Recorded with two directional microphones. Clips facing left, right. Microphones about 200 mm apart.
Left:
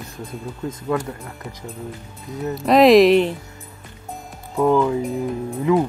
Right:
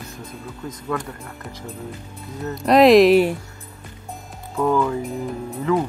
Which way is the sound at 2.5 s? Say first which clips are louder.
Even; centre (ahead or behind).